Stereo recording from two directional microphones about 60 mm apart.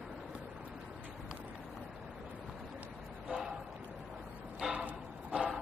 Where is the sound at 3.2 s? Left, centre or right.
Centre.